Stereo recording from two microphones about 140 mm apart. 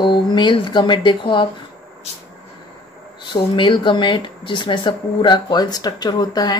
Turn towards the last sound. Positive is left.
turn(degrees=30)  # may be behind; listen again after turning